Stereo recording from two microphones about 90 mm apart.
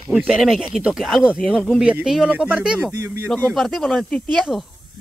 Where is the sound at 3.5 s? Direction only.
Centre (ahead or behind).